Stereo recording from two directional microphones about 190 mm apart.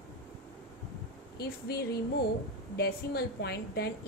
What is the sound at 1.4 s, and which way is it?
A woman's voice, 55° left (ahead or behind).